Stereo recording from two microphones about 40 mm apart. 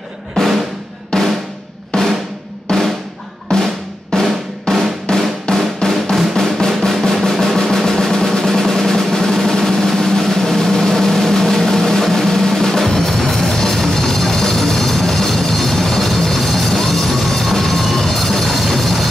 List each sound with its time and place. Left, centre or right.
0.4 s drum: centre
6.3 s drum roll: centre